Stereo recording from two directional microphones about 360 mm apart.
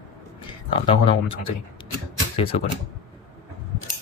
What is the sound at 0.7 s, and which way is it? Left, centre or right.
Speech, centre.